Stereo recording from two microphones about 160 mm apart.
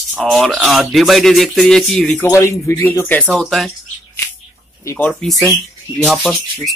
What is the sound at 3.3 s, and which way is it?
Speech, centre (ahead or behind).